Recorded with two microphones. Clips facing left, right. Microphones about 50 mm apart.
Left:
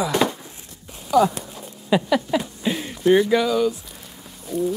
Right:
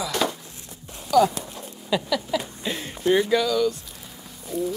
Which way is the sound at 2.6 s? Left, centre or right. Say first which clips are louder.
Left 5 dB; centre.